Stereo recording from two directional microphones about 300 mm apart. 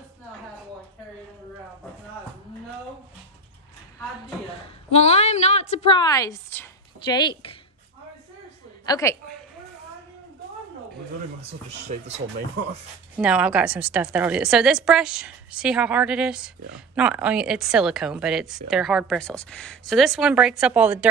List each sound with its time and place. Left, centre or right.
4.9 s a woman's voice: left
8.8 s a woman's voice: centre
11.4 s speech: right
13.1 s speech: centre